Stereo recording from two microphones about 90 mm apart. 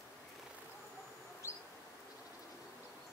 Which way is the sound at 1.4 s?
30° left (ahead or behind).